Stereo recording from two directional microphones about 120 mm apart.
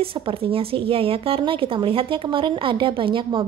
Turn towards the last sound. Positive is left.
turn(degrees=-45)  # may be behind; listen again after turning